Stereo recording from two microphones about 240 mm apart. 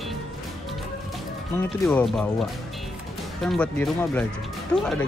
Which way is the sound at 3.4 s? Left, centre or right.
Centre.